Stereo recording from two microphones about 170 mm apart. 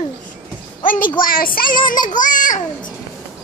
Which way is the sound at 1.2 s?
55° left (ahead or behind).